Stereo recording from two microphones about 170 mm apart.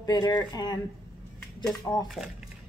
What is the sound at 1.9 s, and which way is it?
Speech, 15° left (ahead or behind).